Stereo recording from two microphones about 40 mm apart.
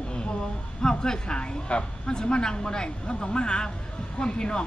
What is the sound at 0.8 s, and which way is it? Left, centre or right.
Speech, centre.